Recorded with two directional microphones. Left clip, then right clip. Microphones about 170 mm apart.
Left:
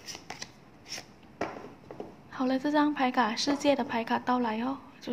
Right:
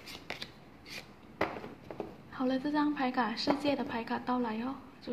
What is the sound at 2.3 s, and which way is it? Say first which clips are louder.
A woman's voice: left 4 dB; 10° left (ahead or behind).